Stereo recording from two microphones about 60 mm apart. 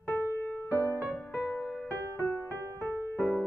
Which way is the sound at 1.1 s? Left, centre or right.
Left.